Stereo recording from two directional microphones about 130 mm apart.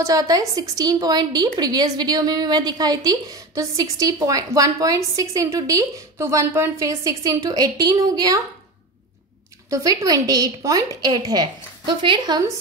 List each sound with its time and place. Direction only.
0.0 s a woman's voice: 30° right (ahead or behind)
9.7 s a woman's voice: 25° right (ahead or behind)